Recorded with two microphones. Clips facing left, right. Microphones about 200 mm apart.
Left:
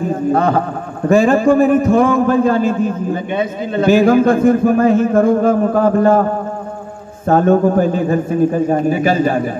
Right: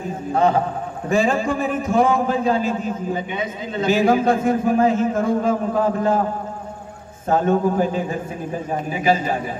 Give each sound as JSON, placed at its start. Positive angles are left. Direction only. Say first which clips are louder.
{"t": 0.3, "sound": "a man's voice", "louder": "left 1 dB", "side_deg": 60}
{"t": 7.2, "sound": "a man's voice", "louder": "left 6 dB", "side_deg": 55}